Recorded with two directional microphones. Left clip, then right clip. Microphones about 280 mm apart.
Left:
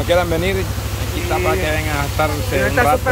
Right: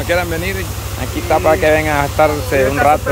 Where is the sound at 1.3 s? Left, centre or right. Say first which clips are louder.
Right 7 dB; right.